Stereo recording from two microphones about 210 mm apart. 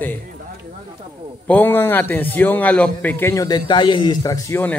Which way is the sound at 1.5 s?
10° left (ahead or behind).